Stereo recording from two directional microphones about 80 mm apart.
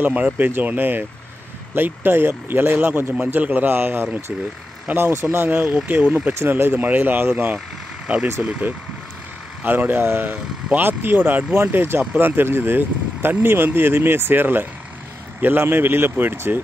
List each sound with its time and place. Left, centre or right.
0.0 s speech: centre